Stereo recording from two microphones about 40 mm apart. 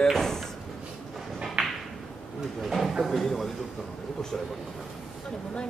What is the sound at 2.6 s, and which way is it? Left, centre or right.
Speech, centre.